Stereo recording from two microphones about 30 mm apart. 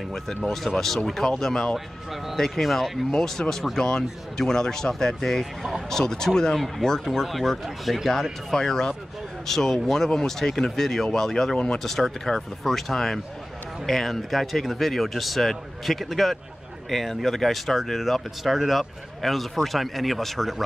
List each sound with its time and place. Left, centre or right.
0.7 s speech: centre
1.5 s speech: left
2.3 s speech: centre
3.1 s speech: centre
5.4 s speech: centre
5.9 s speech: centre
7.2 s speech: centre
8.1 s speech: centre
11.5 s speech: left
11.8 s speech: centre